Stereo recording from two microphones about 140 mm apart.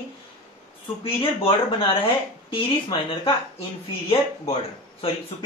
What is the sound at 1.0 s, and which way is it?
Speech, 40° left (ahead or behind).